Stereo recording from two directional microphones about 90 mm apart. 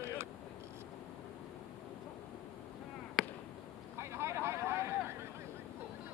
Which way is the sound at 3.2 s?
Centre (ahead or behind).